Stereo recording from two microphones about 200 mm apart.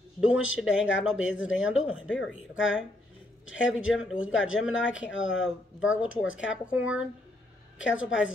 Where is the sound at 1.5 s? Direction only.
75° left (ahead or behind).